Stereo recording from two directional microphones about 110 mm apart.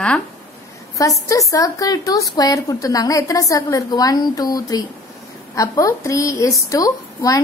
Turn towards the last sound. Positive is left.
turn(degrees=30)  # may be behind; listen again after turning